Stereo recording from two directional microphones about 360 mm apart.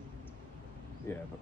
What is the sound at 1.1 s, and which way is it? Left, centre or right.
Speech, centre.